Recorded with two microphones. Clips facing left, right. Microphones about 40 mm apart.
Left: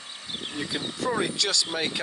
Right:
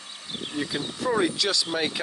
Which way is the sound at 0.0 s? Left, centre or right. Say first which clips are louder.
Even; left.